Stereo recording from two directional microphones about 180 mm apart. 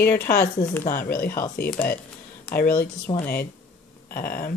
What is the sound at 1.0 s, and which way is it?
Speech, 55° left (ahead or behind).